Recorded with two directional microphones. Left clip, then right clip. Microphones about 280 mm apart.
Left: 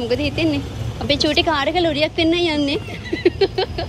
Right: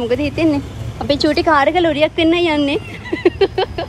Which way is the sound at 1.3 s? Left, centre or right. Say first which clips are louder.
Right 7 dB; right.